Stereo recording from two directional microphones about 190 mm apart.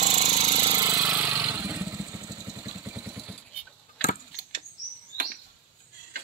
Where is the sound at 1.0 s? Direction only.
5° right (ahead or behind).